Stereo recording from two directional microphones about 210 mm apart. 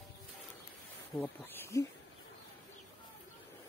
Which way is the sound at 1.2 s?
10° left (ahead or behind).